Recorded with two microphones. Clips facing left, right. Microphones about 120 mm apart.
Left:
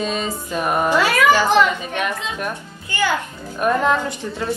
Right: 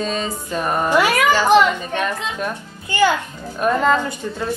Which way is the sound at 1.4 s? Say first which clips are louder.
Right 2 dB; 15° right (ahead or behind).